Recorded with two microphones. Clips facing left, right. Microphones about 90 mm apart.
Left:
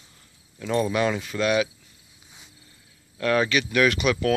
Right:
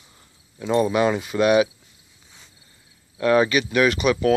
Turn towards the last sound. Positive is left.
turn(degrees=-5)  # may be behind; listen again after turning